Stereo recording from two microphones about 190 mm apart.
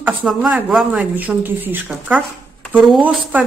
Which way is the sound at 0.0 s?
5° right (ahead or behind).